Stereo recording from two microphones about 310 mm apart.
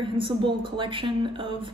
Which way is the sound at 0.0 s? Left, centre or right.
Centre.